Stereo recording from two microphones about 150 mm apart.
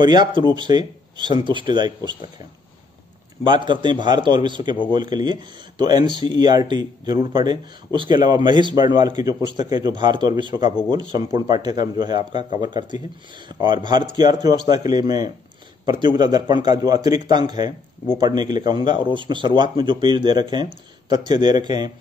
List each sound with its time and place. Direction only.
0.0 s speech: 30° right (ahead or behind)
3.4 s a man's voice: 30° right (ahead or behind)